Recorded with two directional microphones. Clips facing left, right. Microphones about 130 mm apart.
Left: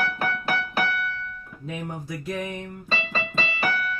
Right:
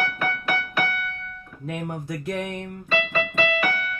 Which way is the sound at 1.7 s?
55° right (ahead or behind).